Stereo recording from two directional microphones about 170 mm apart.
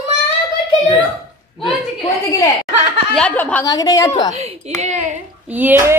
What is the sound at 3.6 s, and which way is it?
Speech, 20° left (ahead or behind).